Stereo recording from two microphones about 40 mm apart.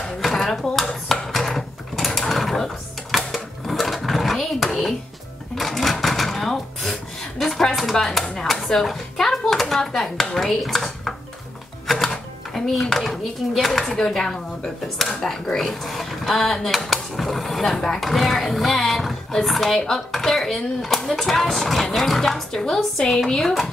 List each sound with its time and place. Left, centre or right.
0.2 s a sound: centre
3.6 s sewing machine: centre
5.6 s cash register: centre
11.9 s music: centre
13.1 s speech: centre